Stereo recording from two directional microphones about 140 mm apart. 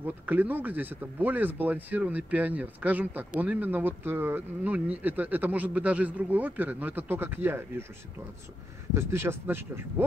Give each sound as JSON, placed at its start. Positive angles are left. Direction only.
{"t": 0.0, "sound": "speech", "side_deg": -15}
{"t": 8.9, "sound": "speech", "side_deg": -20}